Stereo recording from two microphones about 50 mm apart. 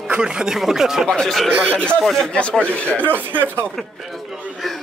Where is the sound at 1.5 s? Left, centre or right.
Right.